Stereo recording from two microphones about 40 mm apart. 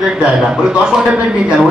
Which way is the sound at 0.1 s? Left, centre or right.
Centre.